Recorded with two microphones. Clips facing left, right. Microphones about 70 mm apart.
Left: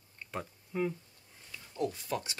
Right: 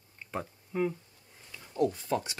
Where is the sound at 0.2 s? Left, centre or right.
Centre.